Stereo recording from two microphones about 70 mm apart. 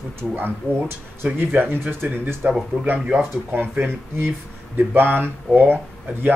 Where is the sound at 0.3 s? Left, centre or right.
Right.